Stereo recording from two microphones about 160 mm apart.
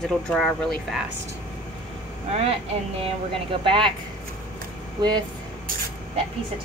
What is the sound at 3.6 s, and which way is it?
Speech, 35° right (ahead or behind).